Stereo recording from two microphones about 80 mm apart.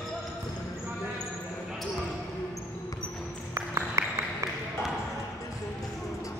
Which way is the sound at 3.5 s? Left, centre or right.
Right.